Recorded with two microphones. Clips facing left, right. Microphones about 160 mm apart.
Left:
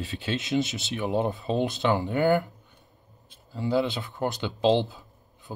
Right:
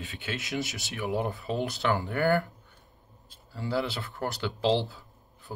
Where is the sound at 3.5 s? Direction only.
20° left (ahead or behind).